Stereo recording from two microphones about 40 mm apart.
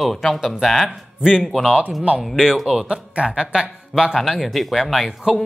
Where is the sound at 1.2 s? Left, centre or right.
Centre.